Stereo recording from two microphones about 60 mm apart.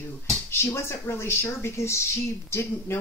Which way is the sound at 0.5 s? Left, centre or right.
Left.